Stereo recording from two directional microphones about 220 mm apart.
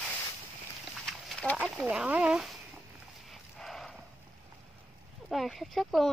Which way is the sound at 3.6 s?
Centre (ahead or behind).